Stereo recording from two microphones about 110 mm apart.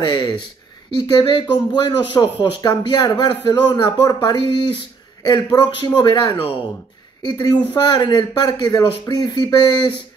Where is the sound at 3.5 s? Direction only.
40° left (ahead or behind).